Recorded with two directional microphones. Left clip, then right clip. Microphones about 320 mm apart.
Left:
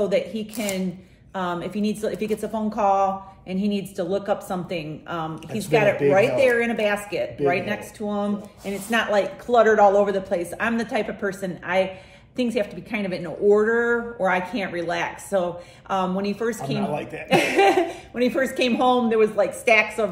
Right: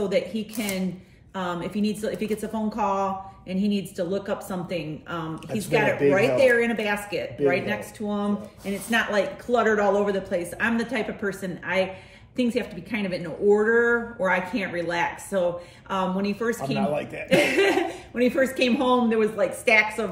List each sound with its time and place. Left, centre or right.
0.0 s a woman's voice: centre
16.8 s a man's voice: centre
17.3 s a woman's voice: centre